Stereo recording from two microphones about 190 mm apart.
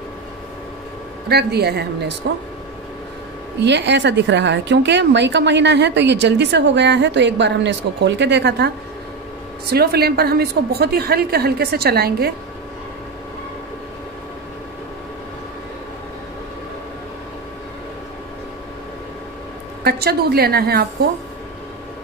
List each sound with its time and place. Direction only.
1.3 s a woman's voice: 60° right (ahead or behind)
3.6 s a woman's voice: 65° right (ahead or behind)
19.8 s a woman's voice: 55° right (ahead or behind)